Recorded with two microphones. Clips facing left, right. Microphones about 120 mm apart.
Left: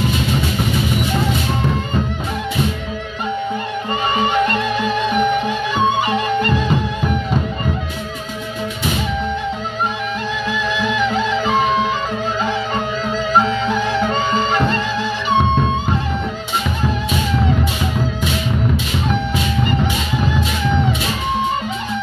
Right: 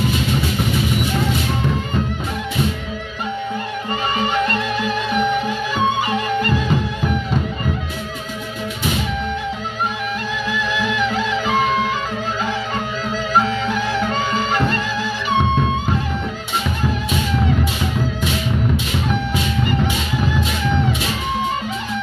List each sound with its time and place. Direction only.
4.2 s music: 20° left (ahead or behind)
10.8 s music: 25° left (ahead or behind)